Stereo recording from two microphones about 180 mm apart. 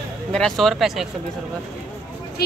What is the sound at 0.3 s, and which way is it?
Speech, 5° left (ahead or behind).